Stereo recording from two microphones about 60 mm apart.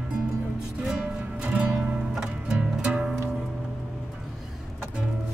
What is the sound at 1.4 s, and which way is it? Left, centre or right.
Music, right.